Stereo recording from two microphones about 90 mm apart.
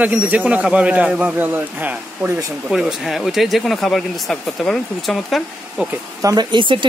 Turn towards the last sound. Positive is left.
turn(degrees=-60)  # may be behind; listen again after turning